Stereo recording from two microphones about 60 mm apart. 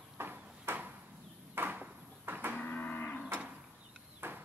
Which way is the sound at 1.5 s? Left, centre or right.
Right.